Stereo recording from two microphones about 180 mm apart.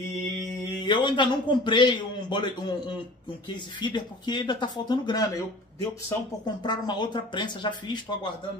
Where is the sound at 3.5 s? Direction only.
25° left (ahead or behind).